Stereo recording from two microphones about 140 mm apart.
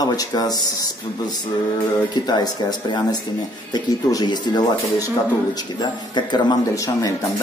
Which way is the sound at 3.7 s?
30° left (ahead or behind).